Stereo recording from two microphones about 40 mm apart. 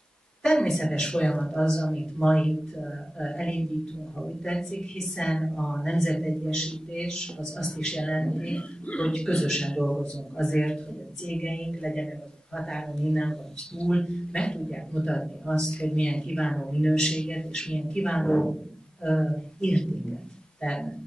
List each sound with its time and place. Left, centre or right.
0.4 s a woman's voice: centre